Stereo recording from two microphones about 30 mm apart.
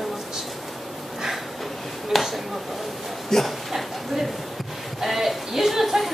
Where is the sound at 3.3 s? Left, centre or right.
Centre.